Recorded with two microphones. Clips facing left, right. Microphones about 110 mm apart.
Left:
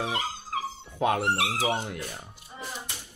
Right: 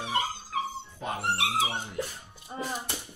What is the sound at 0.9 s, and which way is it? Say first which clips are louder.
Speech: left 10 dB; 65° left (ahead or behind).